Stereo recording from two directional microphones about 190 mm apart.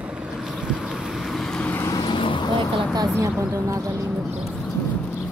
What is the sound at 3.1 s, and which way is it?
Speech, 15° right (ahead or behind).